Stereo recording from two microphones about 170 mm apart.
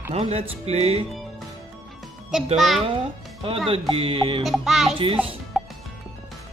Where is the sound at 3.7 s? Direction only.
35° right (ahead or behind).